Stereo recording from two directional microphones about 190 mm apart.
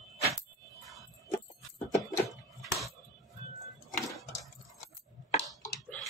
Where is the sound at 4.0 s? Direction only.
Centre (ahead or behind).